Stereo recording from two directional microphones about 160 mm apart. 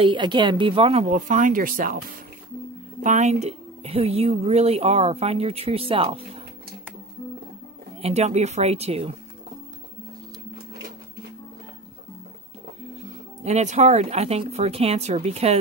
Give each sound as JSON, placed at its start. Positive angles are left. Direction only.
{"t": 0.0, "sound": "a woman's voice", "side_deg": -30}
{"t": 3.0, "sound": "a woman's voice", "side_deg": -50}
{"t": 8.0, "sound": "a woman's voice", "side_deg": -40}
{"t": 13.4, "sound": "speech", "side_deg": -45}